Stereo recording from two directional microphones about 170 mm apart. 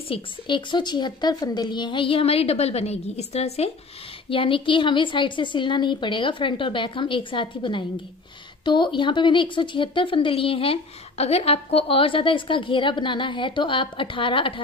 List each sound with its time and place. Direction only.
0.1 s a woman's voice: 30° left (ahead or behind)